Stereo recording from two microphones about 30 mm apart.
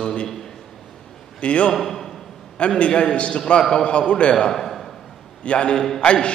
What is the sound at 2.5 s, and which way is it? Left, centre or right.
Speech, left.